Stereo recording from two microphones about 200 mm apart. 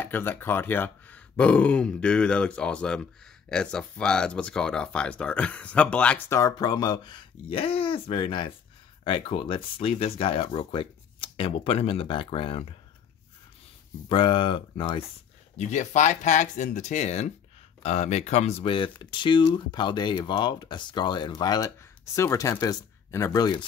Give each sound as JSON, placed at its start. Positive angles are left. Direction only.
{"t": 0.0, "sound": "speech", "side_deg": 10}
{"t": 14.0, "sound": "speech", "side_deg": 25}
{"t": 15.5, "sound": "speech", "side_deg": 35}